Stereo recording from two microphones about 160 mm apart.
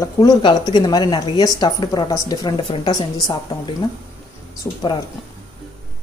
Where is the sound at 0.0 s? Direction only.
25° left (ahead or behind).